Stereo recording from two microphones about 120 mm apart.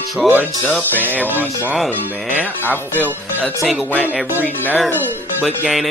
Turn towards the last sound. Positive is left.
turn(degrees=0)  # may be behind; listen again after turning